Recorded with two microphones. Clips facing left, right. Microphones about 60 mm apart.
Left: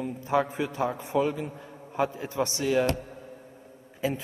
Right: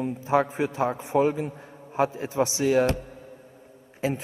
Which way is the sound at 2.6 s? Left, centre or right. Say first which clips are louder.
Right 3 dB; right.